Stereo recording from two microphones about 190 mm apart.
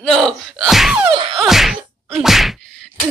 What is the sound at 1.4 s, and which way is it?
Whack, centre (ahead or behind).